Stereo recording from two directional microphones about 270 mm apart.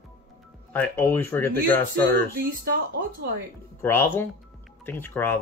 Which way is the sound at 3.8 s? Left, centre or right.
Centre.